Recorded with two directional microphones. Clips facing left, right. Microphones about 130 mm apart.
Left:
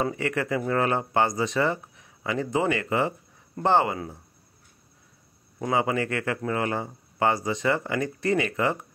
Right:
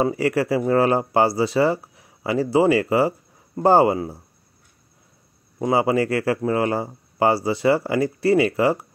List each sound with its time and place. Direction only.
0.0 s speech: 30° right (ahead or behind)
5.7 s speech: 30° right (ahead or behind)